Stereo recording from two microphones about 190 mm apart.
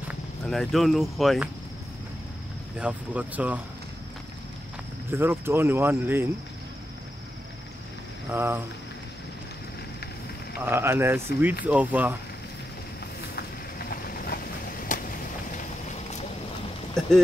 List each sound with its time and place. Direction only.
0.1 s speech: centre (ahead or behind)
2.8 s speech: 5° right (ahead or behind)
5.1 s speech: 10° right (ahead or behind)
8.3 s speech: 10° right (ahead or behind)
10.6 s speech: 10° right (ahead or behind)
13.4 s a sound: 50° left (ahead or behind)